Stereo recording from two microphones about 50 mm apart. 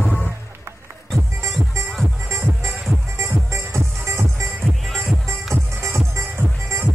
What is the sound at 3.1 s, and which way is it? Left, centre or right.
Music, right.